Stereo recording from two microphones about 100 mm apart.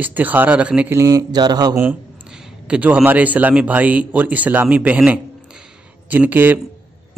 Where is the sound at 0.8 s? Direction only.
30° right (ahead or behind).